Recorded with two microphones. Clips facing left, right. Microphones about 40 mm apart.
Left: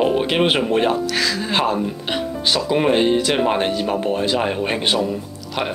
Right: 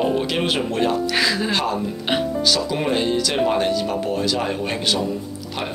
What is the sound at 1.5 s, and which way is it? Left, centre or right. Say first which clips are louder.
Speech: left 3 dB; left.